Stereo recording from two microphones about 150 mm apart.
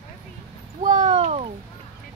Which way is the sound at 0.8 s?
50° right (ahead or behind).